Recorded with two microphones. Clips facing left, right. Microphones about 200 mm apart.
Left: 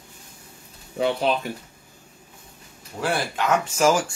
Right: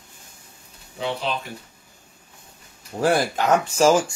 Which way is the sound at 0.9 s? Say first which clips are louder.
Left 5 dB; 55° left (ahead or behind).